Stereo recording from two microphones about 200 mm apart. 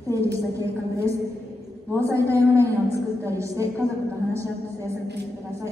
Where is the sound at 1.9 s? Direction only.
15° right (ahead or behind).